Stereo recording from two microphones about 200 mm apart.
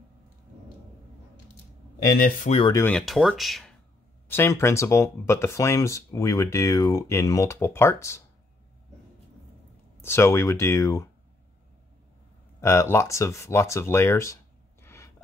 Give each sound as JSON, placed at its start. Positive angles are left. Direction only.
{"t": 2.1, "sound": "speech", "side_deg": 45}
{"t": 2.7, "sound": "speech", "side_deg": 10}
{"t": 4.3, "sound": "speech", "side_deg": 15}
{"t": 10.0, "sound": "speech", "side_deg": 10}
{"t": 12.5, "sound": "speech", "side_deg": 15}